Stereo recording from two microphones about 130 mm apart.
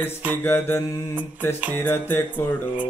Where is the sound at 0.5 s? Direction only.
15° left (ahead or behind).